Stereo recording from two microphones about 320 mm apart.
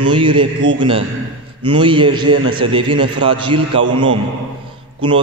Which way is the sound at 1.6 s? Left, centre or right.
Centre.